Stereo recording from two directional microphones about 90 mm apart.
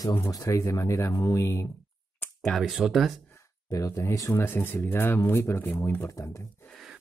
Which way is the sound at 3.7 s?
40° left (ahead or behind).